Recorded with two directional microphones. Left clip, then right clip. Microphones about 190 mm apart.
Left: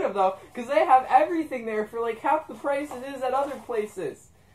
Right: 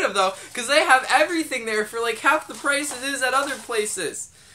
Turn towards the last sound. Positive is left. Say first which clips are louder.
# right 4 dB
turn(degrees=-20)  # may be behind; listen again after turning